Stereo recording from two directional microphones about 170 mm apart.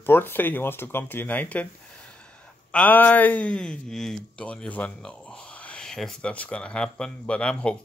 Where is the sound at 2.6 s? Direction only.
10° left (ahead or behind).